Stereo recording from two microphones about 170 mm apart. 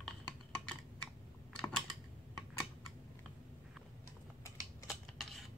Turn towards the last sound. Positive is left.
turn(degrees=0)  # may be behind; listen again after turning